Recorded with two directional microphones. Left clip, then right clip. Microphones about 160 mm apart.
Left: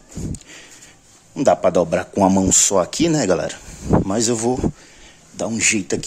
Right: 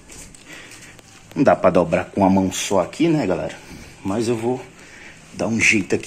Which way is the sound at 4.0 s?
65° left (ahead or behind).